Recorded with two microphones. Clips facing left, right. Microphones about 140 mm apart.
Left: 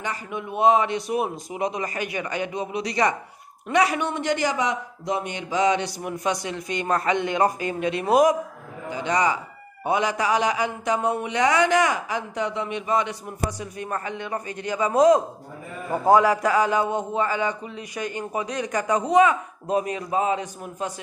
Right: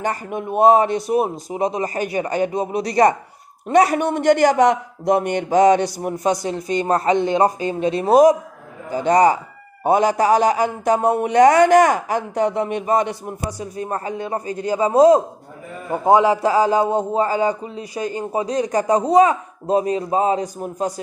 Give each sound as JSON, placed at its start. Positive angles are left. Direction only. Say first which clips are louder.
{"t": 0.0, "sound": "a man's voice", "louder": "right 7 dB", "side_deg": -45}
{"t": 8.9, "sound": "a man's voice", "louder": "right 8 dB", "side_deg": -45}
{"t": 13.5, "sound": "a man's voice", "louder": "right 4 dB", "side_deg": -35}